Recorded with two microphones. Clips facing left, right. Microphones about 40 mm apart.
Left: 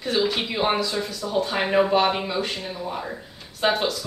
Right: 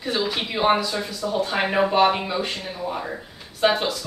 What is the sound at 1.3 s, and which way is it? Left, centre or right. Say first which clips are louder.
Speech: even; centre.